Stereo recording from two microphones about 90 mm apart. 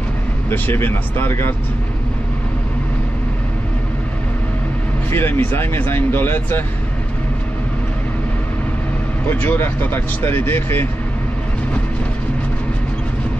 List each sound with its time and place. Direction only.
0.5 s speech: 25° left (ahead or behind)
5.1 s speech: 25° left (ahead or behind)
9.3 s speech: 20° left (ahead or behind)